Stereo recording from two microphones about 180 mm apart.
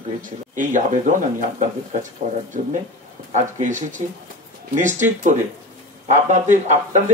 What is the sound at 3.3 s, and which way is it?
Speech, 45° right (ahead or behind).